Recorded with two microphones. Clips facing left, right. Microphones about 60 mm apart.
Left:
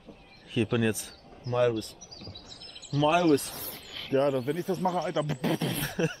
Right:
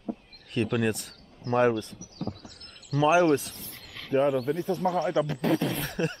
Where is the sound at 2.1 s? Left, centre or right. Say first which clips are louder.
Right 13 dB; centre.